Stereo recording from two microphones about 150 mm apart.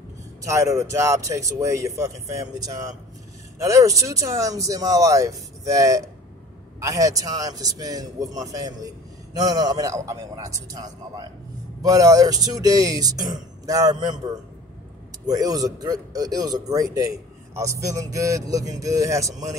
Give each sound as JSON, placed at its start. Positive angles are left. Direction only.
{"t": 0.5, "sound": "a man's voice", "side_deg": -20}
{"t": 15.2, "sound": "a man's voice", "side_deg": -25}